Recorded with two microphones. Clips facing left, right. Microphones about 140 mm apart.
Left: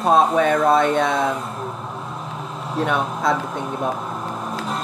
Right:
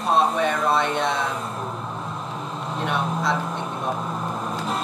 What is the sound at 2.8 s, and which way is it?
Speech, 50° left (ahead or behind).